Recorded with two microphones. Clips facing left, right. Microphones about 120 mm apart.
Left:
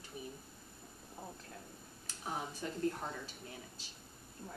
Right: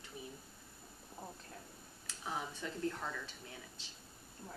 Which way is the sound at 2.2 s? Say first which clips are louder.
Left 1 dB; 25° left (ahead or behind).